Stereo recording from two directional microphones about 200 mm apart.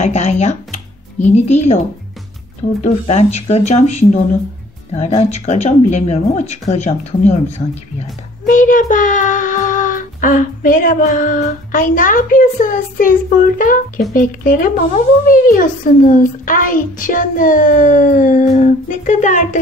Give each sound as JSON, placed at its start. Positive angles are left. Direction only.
{"t": 0.0, "sound": "a woman's voice", "side_deg": 35}
{"t": 2.8, "sound": "a woman's voice", "side_deg": 35}